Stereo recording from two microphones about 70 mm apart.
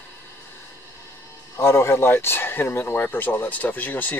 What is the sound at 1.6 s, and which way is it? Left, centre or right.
Speech, left.